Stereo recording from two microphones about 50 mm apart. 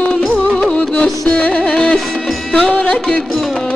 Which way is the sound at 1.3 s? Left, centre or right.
Left.